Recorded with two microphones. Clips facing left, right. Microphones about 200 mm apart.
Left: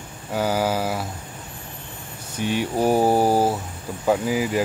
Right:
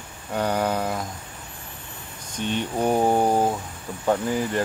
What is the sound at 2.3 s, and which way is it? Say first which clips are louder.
Speech: left 3 dB; 10° left (ahead or behind).